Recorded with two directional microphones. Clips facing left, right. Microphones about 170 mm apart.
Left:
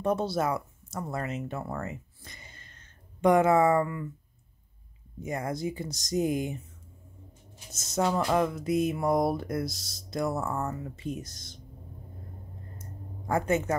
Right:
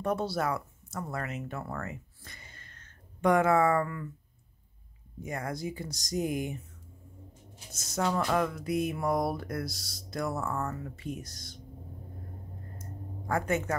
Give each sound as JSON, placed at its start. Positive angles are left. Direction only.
{"t": 0.0, "sound": "speech", "side_deg": 20}
{"t": 5.2, "sound": "speech", "side_deg": 20}
{"t": 7.7, "sound": "speech", "side_deg": 20}
{"t": 13.3, "sound": "speech", "side_deg": 20}